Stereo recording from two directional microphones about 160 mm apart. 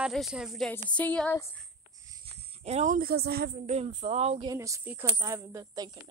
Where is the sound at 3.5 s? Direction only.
45° right (ahead or behind).